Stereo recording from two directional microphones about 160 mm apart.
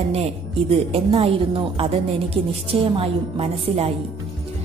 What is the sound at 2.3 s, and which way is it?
A woman's voice, 35° right (ahead or behind).